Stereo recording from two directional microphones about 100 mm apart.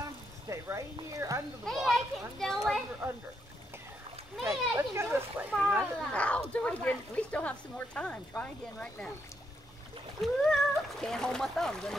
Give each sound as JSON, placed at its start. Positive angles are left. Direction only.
{"t": 0.5, "sound": "speech", "side_deg": -30}
{"t": 1.6, "sound": "speech", "side_deg": 0}
{"t": 3.0, "sound": "speech", "side_deg": -25}
{"t": 4.5, "sound": "speech", "side_deg": -25}
{"t": 5.6, "sound": "speech", "side_deg": -15}
{"t": 6.1, "sound": "speech", "side_deg": 10}
{"t": 10.2, "sound": "speech", "side_deg": 0}